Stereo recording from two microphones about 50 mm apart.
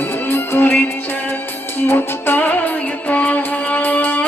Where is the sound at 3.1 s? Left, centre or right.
Left.